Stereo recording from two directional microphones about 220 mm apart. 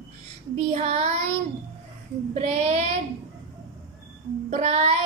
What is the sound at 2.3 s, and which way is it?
Child singing, 30° right (ahead or behind).